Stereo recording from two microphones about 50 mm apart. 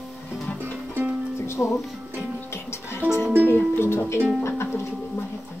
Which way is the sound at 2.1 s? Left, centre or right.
Left.